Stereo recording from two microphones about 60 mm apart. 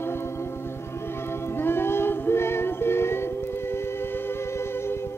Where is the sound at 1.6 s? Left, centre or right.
Left.